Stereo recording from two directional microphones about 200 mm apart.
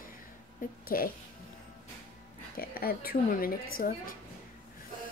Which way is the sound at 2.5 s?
50° left (ahead or behind).